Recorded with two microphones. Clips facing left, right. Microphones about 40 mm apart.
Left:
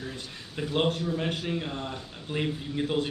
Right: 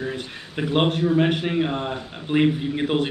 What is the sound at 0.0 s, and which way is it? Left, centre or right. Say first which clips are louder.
Speech: right 9 dB; right.